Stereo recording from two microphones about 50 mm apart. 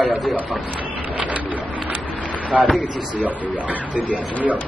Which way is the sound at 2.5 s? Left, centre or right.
Right.